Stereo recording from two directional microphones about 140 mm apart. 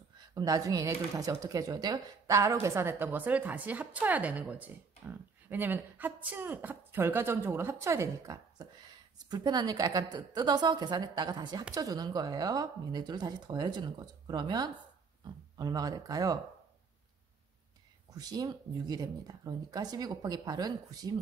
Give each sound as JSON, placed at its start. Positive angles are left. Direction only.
{"t": 0.3, "sound": "a woman's voice", "side_deg": -25}
{"t": 18.1, "sound": "speech", "side_deg": -25}